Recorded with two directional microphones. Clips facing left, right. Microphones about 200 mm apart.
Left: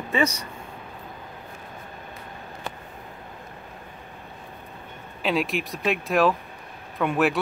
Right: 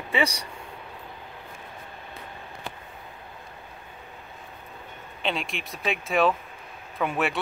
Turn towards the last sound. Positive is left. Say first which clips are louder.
# left 4 dB
turn(degrees=0)  # may be behind; listen again after turning